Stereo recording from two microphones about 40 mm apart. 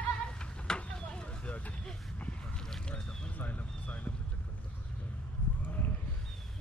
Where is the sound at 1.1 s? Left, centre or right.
Left.